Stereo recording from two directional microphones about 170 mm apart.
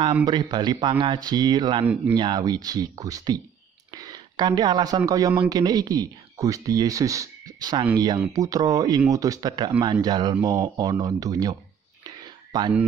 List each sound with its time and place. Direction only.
0.0 s speech: 30° right (ahead or behind)
12.5 s speech: 25° right (ahead or behind)